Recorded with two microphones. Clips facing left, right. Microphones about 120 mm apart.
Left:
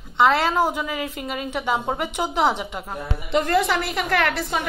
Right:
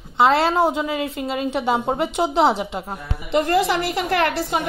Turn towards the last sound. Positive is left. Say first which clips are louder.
# right 2 dB
turn(degrees=-30)  # may be behind; listen again after turning